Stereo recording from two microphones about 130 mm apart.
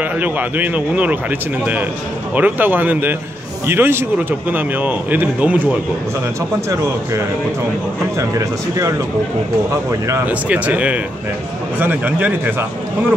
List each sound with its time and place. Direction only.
0.0 s speech: 15° right (ahead or behind)
2.3 s speech: 15° right (ahead or behind)
8.2 s speech: 25° right (ahead or behind)